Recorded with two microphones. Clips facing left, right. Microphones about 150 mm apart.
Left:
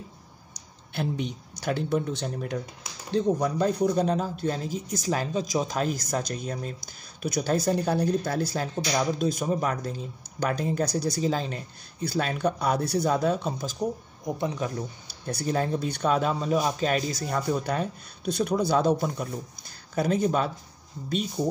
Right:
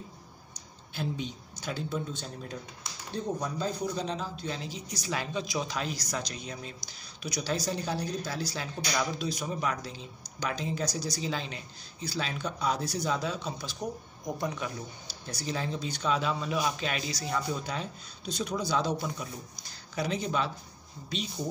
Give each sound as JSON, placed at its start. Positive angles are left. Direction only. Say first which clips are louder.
{"t": 0.9, "sound": "a man's voice", "louder": "left 5 dB", "side_deg": 60}
{"t": 11.2, "sound": "a man's voice", "louder": "left 7 dB", "side_deg": 40}
{"t": 12.0, "sound": "speech", "louder": "left 8 dB", "side_deg": 50}
{"t": 14.2, "sound": "speech", "louder": "left 4 dB", "side_deg": 25}
{"t": 15.2, "sound": "a man's voice", "louder": "left 7 dB", "side_deg": 50}